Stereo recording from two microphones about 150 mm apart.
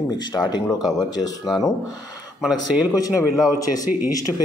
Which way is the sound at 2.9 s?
25° left (ahead or behind).